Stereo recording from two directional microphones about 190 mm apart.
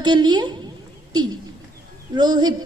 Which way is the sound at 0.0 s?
25° right (ahead or behind).